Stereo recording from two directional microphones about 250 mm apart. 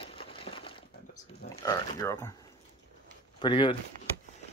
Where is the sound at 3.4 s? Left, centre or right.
Centre.